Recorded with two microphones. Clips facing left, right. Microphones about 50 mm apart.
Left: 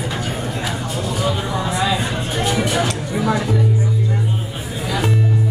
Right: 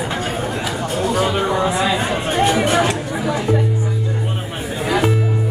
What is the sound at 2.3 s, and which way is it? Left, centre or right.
Music, right.